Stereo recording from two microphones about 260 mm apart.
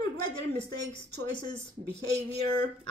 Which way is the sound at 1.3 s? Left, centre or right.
Centre.